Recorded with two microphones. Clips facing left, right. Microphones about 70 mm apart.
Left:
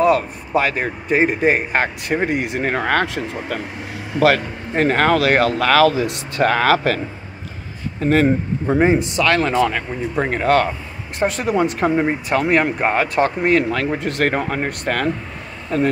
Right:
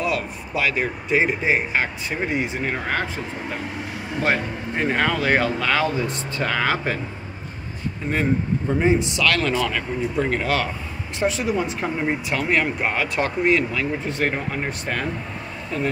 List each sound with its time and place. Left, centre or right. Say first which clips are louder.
0.0 s speech: left 9 dB; left
4.2 s speech: left 7 dB; left
8.0 s speech: left 7 dB; left
8.8 s speech: left 3 dB; left
12.3 s speech: left 5 dB; left